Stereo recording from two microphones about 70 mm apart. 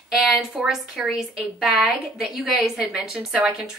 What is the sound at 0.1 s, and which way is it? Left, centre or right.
A woman's voice, centre.